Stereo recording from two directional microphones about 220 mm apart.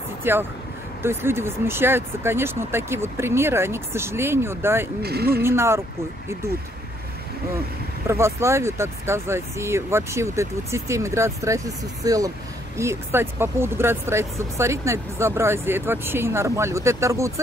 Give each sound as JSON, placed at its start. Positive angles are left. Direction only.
{"t": 0.2, "sound": "speech", "side_deg": -10}
{"t": 5.0, "sound": "speech", "side_deg": -45}
{"t": 5.4, "sound": "speech", "side_deg": -10}
{"t": 8.1, "sound": "speech", "side_deg": -10}